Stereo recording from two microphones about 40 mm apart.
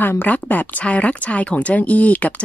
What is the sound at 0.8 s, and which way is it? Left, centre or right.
Speech, left.